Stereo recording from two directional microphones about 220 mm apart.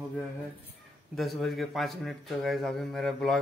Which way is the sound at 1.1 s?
Centre (ahead or behind).